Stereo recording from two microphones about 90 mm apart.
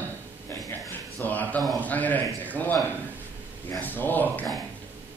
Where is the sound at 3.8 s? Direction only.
20° left (ahead or behind).